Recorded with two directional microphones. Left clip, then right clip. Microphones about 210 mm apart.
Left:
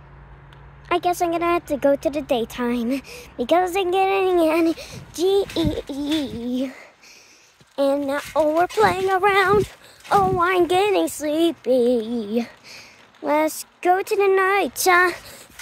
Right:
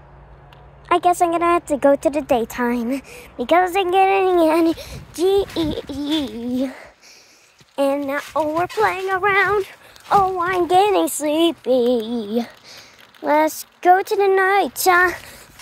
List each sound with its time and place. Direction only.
0.8 s speech: 5° right (ahead or behind); by 9.6 s 20° left (ahead or behind)
9.6 s speech: 5° left (ahead or behind)
10.3 s speech: 20° left (ahead or behind)
10.7 s speech: 10° right (ahead or behind)
11.2 s female singing: 5° right (ahead or behind)